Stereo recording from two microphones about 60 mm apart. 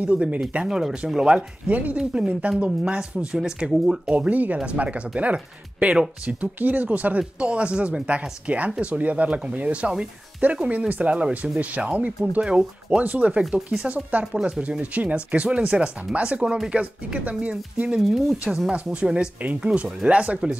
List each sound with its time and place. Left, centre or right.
0.0 s speech: right
0.7 s speech: centre
4.1 s speech: right